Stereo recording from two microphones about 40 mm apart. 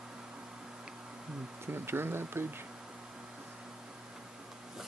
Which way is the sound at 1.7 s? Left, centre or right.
Right.